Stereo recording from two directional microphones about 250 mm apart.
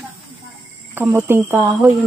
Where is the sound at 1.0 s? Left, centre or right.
Centre.